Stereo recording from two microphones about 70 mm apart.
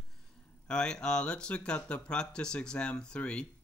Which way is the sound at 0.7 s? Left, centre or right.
Centre.